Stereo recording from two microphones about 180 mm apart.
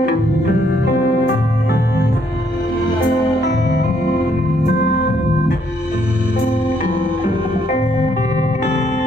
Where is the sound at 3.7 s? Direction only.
65° left (ahead or behind).